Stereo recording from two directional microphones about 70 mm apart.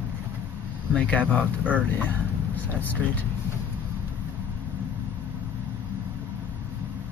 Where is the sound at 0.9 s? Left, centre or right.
Centre.